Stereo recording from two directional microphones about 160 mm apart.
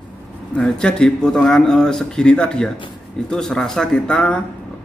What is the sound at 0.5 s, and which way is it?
Speech, 5° left (ahead or behind).